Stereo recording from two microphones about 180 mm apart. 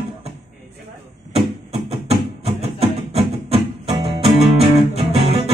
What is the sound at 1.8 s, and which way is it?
Music, 35° right (ahead or behind).